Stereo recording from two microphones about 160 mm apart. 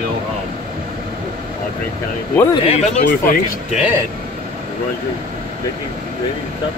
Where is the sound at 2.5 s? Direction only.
35° left (ahead or behind).